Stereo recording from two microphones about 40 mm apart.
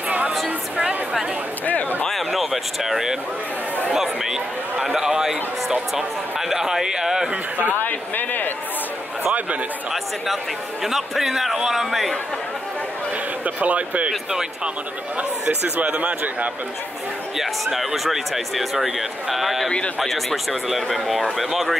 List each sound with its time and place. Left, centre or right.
2.0 s a sound: centre
3.9 s speech: centre
6.5 s speech: centre
7.8 s speech: left
10.8 s speech: centre
13.6 s speech: right
15.8 s speech: right
17.4 s speech: centre